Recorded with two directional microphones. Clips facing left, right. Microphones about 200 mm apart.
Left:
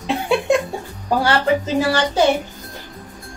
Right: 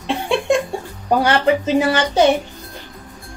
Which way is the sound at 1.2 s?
20° right (ahead or behind).